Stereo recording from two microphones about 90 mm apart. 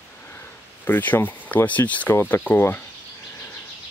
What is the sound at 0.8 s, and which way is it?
Speech, 20° left (ahead or behind).